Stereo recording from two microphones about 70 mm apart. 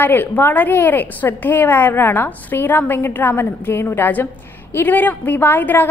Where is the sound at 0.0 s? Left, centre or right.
Left.